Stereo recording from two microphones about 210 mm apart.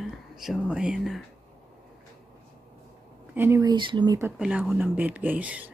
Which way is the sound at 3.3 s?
10° right (ahead or behind).